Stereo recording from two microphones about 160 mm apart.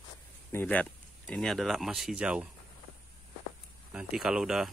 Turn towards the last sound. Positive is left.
turn(degrees=-5)  # may be behind; listen again after turning